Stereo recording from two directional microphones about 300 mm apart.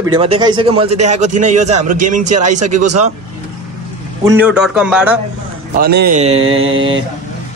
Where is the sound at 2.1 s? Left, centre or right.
Right.